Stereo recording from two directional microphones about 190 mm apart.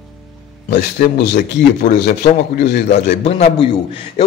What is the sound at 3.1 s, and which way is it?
A man's voice, 35° left (ahead or behind).